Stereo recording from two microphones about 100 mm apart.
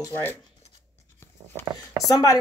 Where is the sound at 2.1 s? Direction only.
40° left (ahead or behind).